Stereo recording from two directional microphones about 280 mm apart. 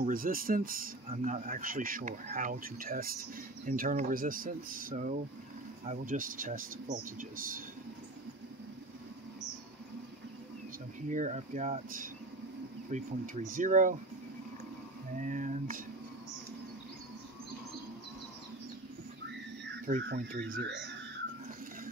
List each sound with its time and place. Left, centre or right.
0.0 s speech: right
11.1 s speech: right
15.1 s speech: right
19.9 s speech: right